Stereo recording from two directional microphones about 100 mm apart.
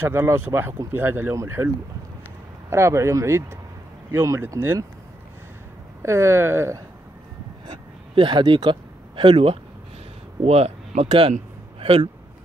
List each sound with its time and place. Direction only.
0.0 s speech: 25° right (ahead or behind)
2.7 s speech: 30° right (ahead or behind)
6.0 s speech: 30° right (ahead or behind)
7.6 s a sound: 55° right (ahead or behind)
10.4 s speech: 90° right
11.1 s a man's voice: 65° right (ahead or behind)